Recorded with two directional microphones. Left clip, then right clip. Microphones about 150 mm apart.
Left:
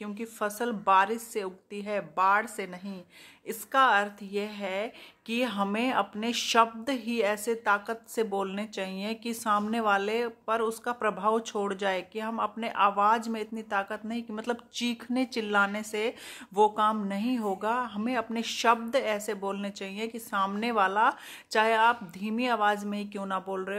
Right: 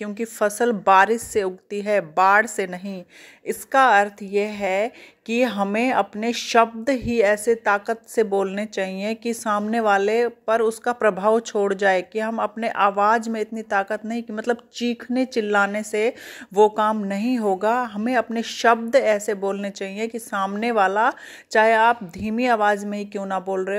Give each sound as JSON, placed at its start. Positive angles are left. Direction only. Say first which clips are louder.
{"t": 0.0, "sound": "a woman's voice", "louder": "right 10 dB", "side_deg": -35}